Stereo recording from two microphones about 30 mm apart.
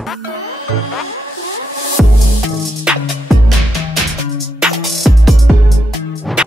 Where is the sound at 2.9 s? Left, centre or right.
Right.